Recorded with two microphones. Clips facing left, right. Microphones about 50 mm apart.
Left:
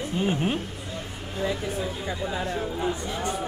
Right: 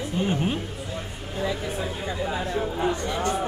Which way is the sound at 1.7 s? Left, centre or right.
Centre.